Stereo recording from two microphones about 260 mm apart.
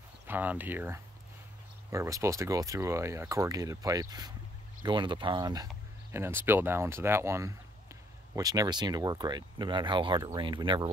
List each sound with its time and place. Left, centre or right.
0.3 s speech: centre